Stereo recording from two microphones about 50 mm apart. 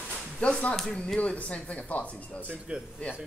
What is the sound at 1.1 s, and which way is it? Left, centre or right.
Speech, left.